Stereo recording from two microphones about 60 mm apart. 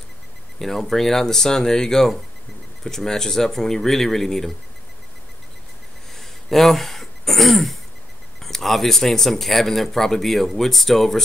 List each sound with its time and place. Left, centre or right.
0.6 s speech: centre
6.1 s throat clearing: centre
8.4 s speech: centre